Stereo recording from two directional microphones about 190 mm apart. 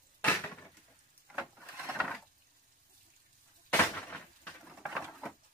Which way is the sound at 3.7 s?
10° left (ahead or behind).